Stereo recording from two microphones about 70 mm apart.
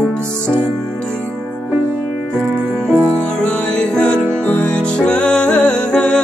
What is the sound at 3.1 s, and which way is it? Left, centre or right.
Music, centre.